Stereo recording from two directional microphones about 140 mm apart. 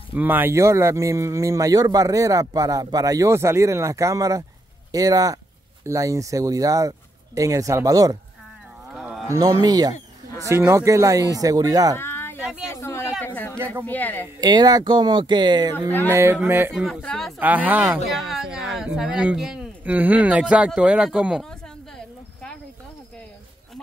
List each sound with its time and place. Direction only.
0.1 s speech: 15° right (ahead or behind)
8.9 s cattle: centre (ahead or behind)
9.3 s speech: 25° right (ahead or behind)
12.0 s a sound: 15° left (ahead or behind)
13.2 s speech: 15° left (ahead or behind)
14.4 s speech: 30° right (ahead or behind)
16.1 s speech: 20° right (ahead or behind)
16.7 s speech: centre (ahead or behind)
17.4 s speech: 10° right (ahead or behind)
21.5 s a sound: 5° left (ahead or behind)